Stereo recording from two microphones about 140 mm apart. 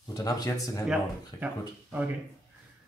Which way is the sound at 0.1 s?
25° left (ahead or behind).